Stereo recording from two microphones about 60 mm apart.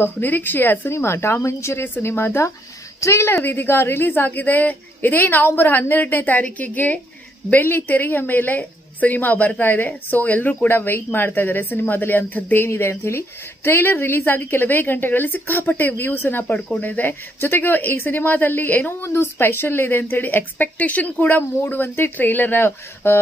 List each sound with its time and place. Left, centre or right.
0.0 s speech: left
3.4 s speech: left
21.2 s speech: left